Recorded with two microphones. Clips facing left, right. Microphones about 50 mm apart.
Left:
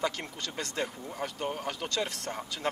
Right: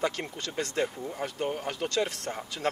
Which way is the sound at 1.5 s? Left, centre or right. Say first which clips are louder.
Right 3 dB; right.